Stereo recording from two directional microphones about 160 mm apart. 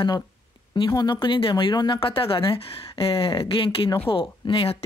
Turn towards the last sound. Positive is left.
turn(degrees=35)  # may be behind; listen again after turning